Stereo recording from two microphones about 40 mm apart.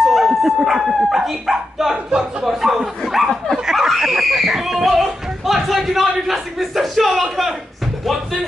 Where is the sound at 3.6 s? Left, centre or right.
Centre.